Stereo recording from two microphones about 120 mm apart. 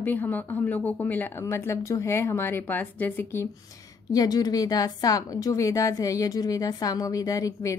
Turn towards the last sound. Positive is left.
turn(degrees=30)  # may be behind; listen again after turning